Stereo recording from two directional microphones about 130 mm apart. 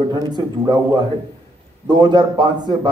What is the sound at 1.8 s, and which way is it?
Speech, 35° right (ahead or behind).